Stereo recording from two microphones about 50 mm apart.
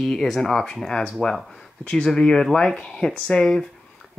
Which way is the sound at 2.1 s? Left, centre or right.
Centre.